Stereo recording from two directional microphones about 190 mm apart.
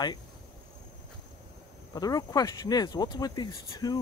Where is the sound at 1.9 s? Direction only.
20° left (ahead or behind).